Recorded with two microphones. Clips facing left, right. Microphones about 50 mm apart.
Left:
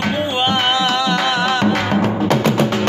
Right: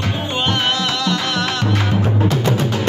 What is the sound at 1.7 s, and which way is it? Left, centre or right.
Music, left.